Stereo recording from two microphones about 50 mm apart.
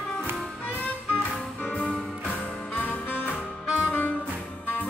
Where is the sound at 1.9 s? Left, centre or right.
Centre.